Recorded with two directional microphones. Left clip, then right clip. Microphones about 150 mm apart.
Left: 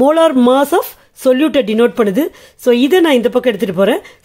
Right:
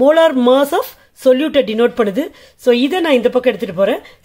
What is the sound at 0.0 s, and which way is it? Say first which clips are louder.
Speech: even; 25° left (ahead or behind).